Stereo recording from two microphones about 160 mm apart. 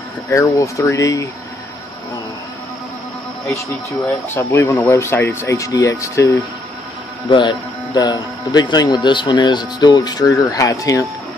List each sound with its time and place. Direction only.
0.3 s speech: 20° left (ahead or behind)
4.4 s speech: 15° left (ahead or behind)
7.2 s speech: 30° left (ahead or behind)